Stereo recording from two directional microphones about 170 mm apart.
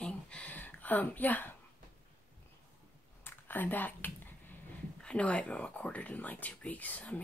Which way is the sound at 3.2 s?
10° left (ahead or behind).